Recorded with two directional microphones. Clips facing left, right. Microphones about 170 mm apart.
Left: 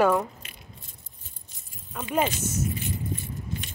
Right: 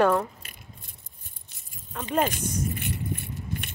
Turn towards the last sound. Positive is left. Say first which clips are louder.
# even
turn(degrees=-60)  # may be behind; listen again after turning